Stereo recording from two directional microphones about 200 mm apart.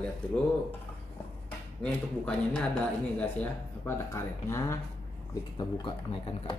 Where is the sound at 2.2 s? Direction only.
5° left (ahead or behind).